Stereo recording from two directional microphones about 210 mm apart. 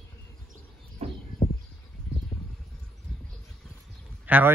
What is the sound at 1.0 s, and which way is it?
Bird, 30° right (ahead or behind).